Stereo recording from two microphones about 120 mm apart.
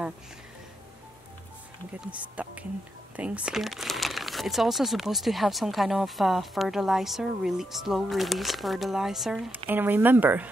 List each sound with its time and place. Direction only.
2.0 s speech: 10° right (ahead or behind)
9.7 s speech: 15° right (ahead or behind)